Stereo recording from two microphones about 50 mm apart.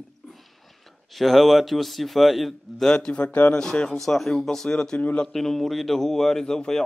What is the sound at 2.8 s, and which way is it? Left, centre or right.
Speech, centre.